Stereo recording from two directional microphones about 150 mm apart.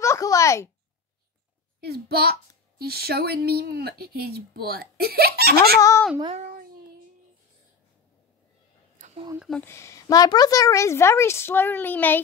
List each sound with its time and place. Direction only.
0.0 s a sound: 20° left (ahead or behind)
1.8 s speech: 90° right
5.8 s a woman's voice: 20° left (ahead or behind)
6.4 s child singing: 85° right
8.9 s a sound: 55° right (ahead or behind)
9.6 s a woman's voice: 15° left (ahead or behind)